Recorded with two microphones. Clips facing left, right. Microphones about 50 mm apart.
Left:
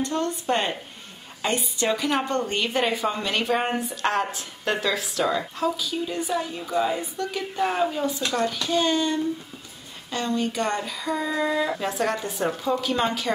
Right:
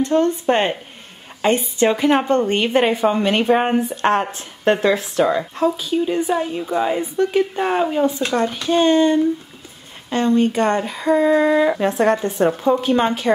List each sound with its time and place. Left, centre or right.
0.0 s a woman's voice: right